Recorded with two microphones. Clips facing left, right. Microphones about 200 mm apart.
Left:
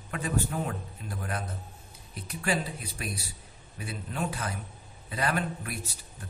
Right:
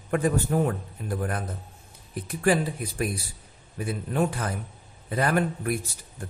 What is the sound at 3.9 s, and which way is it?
A man's voice, 50° right (ahead or behind).